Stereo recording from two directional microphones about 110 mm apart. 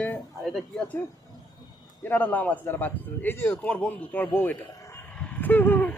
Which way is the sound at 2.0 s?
15° left (ahead or behind).